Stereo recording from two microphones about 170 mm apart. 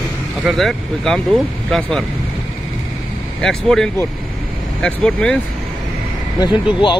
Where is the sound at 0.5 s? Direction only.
Centre (ahead or behind).